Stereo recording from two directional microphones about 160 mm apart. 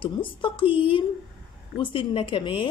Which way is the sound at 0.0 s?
30° left (ahead or behind).